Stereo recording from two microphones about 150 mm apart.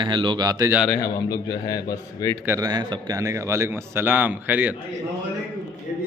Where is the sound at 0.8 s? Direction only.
15° left (ahead or behind).